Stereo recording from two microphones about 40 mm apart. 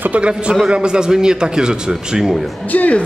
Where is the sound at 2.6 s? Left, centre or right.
Left.